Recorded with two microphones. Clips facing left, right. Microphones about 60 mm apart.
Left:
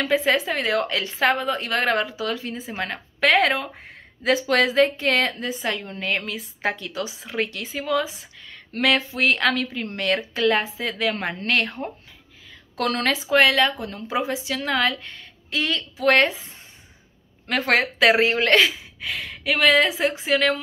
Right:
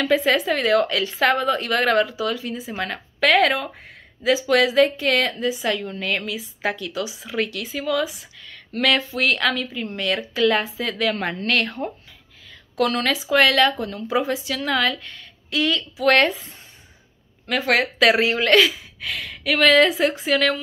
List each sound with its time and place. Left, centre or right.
0.0 s a woman's voice: left
4.2 s a woman's voice: left
9.5 s speech: left
9.9 s a woman's voice: left
12.7 s a woman's voice: left
17.5 s a woman's voice: left